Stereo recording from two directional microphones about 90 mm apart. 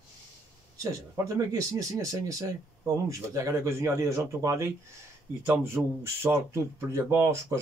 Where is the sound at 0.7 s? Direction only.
35° right (ahead or behind).